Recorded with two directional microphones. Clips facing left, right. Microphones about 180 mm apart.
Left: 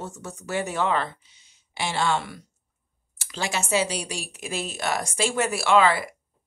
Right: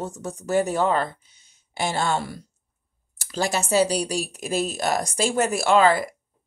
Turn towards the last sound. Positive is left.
turn(degrees=-40)  # may be behind; listen again after turning